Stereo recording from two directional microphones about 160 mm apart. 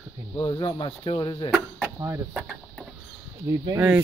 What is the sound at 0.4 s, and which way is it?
Speech, 30° left (ahead or behind).